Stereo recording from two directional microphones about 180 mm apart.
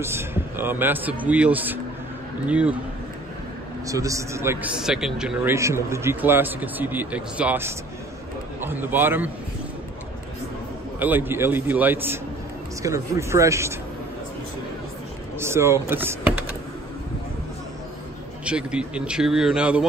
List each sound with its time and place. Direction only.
0.0 s a man's voice: 15° right (ahead or behind)
3.8 s a man's voice: 20° right (ahead or behind)
4.8 s a man's voice: 5° right (ahead or behind)
11.0 s a man's voice: 10° right (ahead or behind)
15.3 s speech: 15° right (ahead or behind)
18.4 s speech: 5° right (ahead or behind)